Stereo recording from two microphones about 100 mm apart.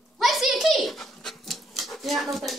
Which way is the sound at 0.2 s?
Centre (ahead or behind).